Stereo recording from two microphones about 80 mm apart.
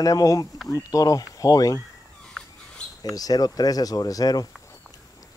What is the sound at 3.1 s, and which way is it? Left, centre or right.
Speech, left.